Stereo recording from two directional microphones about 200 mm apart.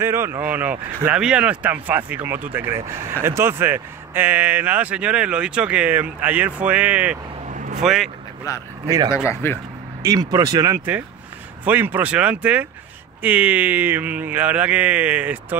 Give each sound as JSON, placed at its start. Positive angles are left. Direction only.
{"t": 0.0, "sound": "speech", "side_deg": -10}
{"t": 7.4, "sound": "vehicle", "side_deg": -35}
{"t": 7.8, "sound": "speech", "side_deg": 0}
{"t": 8.5, "sound": "speech", "side_deg": 15}
{"t": 8.8, "sound": "speech", "side_deg": -15}
{"t": 9.1, "sound": "speech", "side_deg": 15}
{"t": 10.0, "sound": "speech", "side_deg": -20}